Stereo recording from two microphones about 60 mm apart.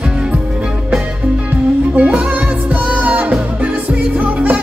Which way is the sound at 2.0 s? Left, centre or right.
Right.